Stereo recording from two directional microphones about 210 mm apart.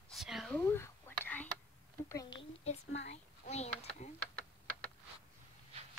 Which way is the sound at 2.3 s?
30° left (ahead or behind).